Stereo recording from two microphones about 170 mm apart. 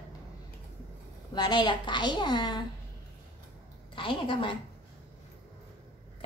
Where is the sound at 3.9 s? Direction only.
30° left (ahead or behind).